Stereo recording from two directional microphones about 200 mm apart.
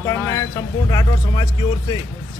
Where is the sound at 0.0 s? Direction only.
15° left (ahead or behind).